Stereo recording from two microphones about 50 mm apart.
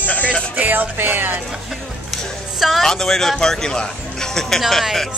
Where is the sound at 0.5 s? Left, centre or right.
Right.